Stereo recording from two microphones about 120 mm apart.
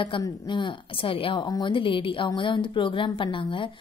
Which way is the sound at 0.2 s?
40° left (ahead or behind).